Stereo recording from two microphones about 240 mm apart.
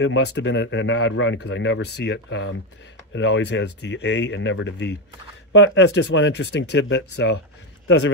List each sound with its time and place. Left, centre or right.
0.0 s speech: left